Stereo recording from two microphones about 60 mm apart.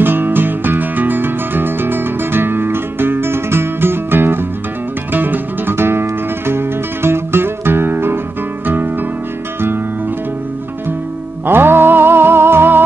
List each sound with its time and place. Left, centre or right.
0.0 s music: right
11.4 s music: right